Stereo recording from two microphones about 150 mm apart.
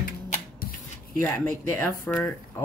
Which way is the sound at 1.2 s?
10° left (ahead or behind).